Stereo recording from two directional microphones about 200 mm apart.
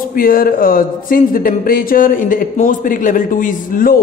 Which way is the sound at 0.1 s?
45° left (ahead or behind).